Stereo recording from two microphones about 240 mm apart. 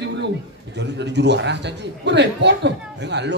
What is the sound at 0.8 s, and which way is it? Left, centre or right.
A man's voice, right.